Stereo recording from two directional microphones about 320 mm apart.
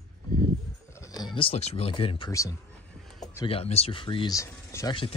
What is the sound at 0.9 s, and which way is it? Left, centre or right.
Speech, centre.